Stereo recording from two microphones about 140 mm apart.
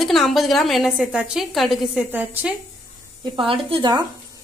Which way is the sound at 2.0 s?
15° right (ahead or behind).